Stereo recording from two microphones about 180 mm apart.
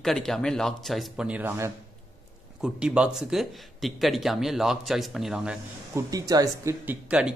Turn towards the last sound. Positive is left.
turn(degrees=-5)  # may be behind; listen again after turning